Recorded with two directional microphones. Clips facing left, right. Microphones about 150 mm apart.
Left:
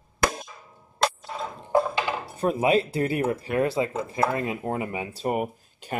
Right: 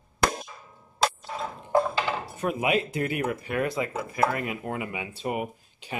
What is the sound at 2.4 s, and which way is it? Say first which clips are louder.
Speech: left 5 dB; 35° left (ahead or behind).